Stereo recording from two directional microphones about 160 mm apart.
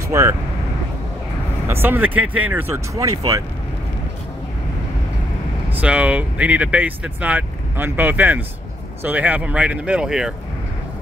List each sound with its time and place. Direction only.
0.1 s speech: 15° right (ahead or behind)
1.7 s speech: 15° right (ahead or behind)
5.7 s speech: 10° right (ahead or behind)